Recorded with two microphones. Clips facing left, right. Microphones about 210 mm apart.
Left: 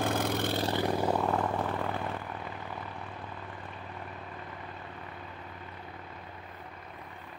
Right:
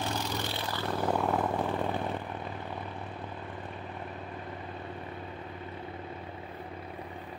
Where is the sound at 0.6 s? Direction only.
15° left (ahead or behind).